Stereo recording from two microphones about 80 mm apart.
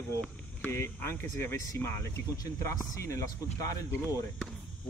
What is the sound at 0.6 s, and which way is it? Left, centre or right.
Speech, left.